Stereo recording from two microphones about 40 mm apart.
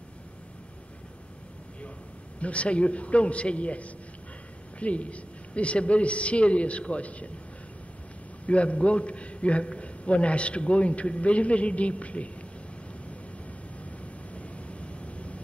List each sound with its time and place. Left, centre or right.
2.4 s a man's voice: left
8.5 s a man's voice: left
14.3 s vehicle: left